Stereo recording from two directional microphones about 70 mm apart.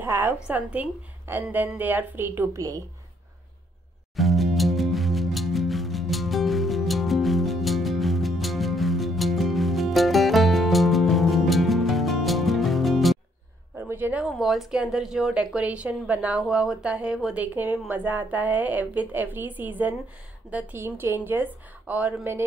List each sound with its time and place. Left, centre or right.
0.0 s a woman's voice: right
2.5 s a woman's voice: right
4.2 s music: centre
13.7 s a woman's voice: right
14.2 s a woman's voice: centre
17.4 s a woman's voice: right
20.7 s a woman's voice: right